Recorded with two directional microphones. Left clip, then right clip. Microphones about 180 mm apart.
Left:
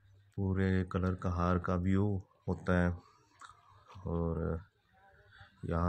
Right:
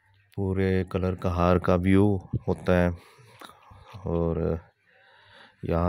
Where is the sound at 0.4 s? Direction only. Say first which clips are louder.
Right 9 dB; 40° right (ahead or behind).